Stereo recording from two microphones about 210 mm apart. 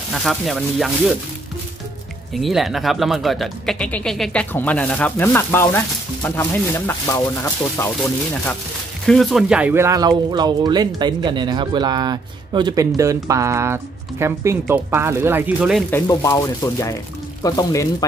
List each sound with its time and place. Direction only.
0.1 s speech: centre (ahead or behind)
2.3 s speech: centre (ahead or behind)
15.9 s speech: 15° left (ahead or behind)